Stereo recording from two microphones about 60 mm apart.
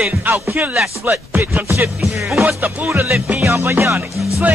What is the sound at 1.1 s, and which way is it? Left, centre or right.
Speech, right.